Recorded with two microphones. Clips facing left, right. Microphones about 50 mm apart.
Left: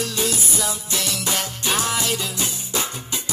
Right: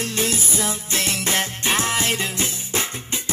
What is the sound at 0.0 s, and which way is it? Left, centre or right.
Music, right.